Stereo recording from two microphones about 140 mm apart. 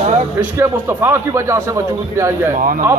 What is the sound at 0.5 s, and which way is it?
Speech, 15° right (ahead or behind).